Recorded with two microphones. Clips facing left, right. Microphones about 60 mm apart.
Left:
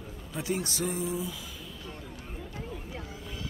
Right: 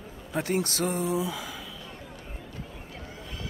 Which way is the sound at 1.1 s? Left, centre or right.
Right.